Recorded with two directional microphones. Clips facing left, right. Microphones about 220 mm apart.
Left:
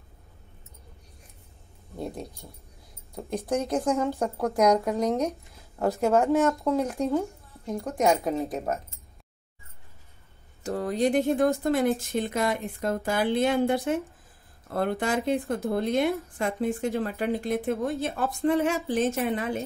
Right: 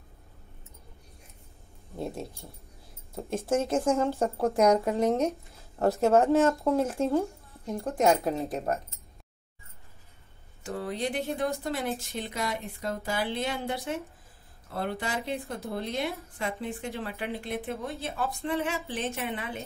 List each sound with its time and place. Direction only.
2.0 s keys jangling: centre (ahead or behind)
3.2 s speech: centre (ahead or behind)
4.5 s speech: 30° right (ahead or behind)
5.8 s speech: centre (ahead or behind)
10.6 s speech: 45° left (ahead or behind)